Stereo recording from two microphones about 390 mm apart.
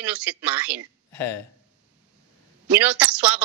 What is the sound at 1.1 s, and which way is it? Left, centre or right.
Speech, left.